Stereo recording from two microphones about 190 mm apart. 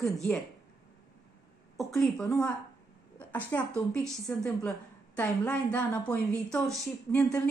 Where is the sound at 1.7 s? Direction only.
Centre (ahead or behind).